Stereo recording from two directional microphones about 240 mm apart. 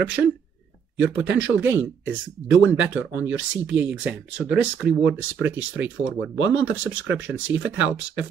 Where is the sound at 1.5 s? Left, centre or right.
Centre.